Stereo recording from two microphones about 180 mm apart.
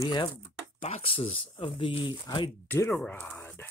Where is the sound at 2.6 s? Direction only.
15° left (ahead or behind).